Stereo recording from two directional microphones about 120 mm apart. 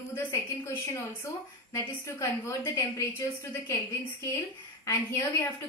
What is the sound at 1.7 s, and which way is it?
A woman's voice, 25° left (ahead or behind).